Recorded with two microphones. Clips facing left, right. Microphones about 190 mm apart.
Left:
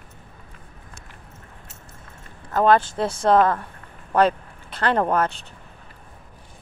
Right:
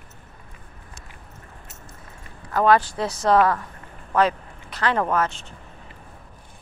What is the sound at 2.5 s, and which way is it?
Speech, 25° left (ahead or behind).